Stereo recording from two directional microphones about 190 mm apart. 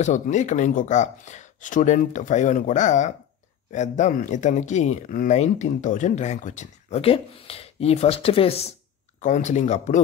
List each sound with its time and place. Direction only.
0.0 s speech: 40° left (ahead or behind)